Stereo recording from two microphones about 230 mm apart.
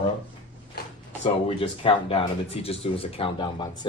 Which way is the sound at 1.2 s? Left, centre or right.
Left.